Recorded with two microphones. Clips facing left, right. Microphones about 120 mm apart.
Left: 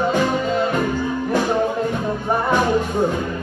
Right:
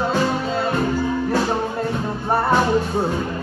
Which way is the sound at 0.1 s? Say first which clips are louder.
Left 1 dB; 15° left (ahead or behind).